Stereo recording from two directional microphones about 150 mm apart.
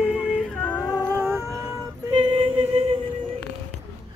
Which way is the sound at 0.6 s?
10° left (ahead or behind).